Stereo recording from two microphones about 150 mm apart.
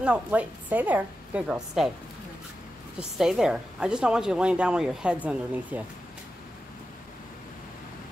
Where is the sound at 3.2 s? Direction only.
5° right (ahead or behind).